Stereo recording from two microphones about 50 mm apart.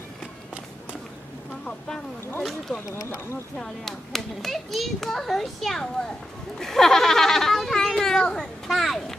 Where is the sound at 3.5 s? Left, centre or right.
Centre.